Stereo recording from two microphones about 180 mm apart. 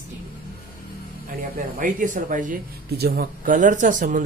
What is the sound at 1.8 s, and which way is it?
Speech, 45° right (ahead or behind).